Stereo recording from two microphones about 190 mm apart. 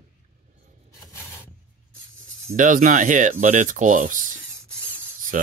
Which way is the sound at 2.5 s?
45° right (ahead or behind).